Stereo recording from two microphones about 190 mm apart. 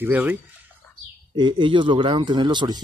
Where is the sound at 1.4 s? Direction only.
25° right (ahead or behind).